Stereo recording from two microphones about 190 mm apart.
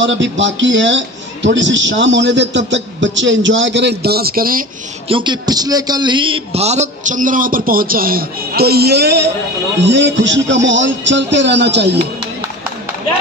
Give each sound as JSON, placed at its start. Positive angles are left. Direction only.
{"t": 0.0, "sound": "a man's voice", "side_deg": -75}
{"t": 5.0, "sound": "a man's voice", "side_deg": -25}